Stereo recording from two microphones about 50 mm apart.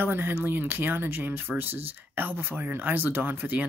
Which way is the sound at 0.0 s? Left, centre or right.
Right.